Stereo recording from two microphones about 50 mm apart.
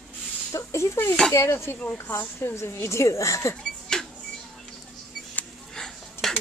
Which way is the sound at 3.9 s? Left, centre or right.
Centre.